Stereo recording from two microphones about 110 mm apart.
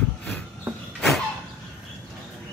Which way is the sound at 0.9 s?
5° left (ahead or behind).